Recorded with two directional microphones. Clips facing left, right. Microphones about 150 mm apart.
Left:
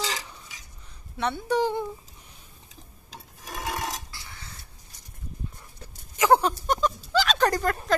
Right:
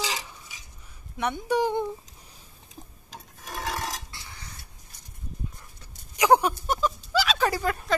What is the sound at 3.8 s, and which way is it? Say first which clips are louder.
Burping: left 1 dB; 20° left (ahead or behind).